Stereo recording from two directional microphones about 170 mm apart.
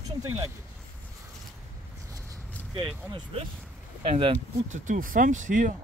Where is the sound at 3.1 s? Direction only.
30° right (ahead or behind).